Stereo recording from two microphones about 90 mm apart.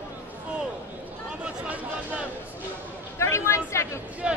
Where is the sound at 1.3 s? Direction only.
10° right (ahead or behind).